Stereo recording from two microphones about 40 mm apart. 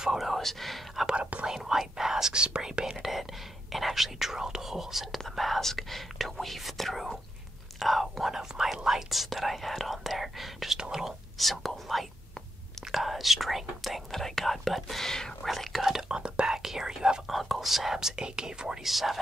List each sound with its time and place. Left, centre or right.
0.0 s speech: centre
0.3 s speech: centre
1.1 s speech: right
1.4 s speech: centre
2.4 s speech: right
5.3 s speech: centre
11.3 s speech: centre
14.1 s speech: centre
15.4 s speech: centre
15.9 s speech: centre
17.3 s speech: centre
18.9 s speech: centre